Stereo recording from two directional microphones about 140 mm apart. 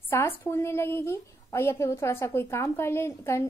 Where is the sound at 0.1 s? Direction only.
15° left (ahead or behind).